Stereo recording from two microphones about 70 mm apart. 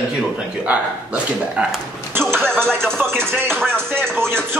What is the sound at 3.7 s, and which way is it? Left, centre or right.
Music, right.